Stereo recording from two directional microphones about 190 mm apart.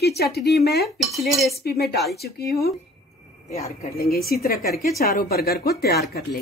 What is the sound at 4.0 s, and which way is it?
A woman's voice, 50° left (ahead or behind).